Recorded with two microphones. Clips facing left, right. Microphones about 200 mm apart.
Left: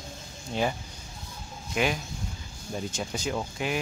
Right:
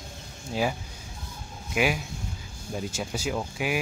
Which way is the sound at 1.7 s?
10° right (ahead or behind).